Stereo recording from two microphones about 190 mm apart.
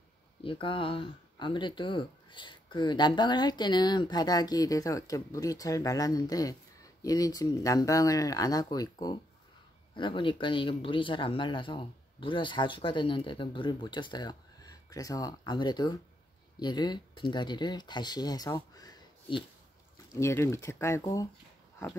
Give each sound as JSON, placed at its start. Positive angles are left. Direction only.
{"t": 0.4, "sound": "speech", "side_deg": 25}